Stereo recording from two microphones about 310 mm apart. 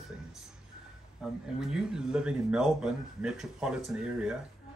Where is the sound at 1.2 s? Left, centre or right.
Centre.